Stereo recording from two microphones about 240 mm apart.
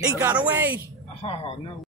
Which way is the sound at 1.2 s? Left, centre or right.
Left.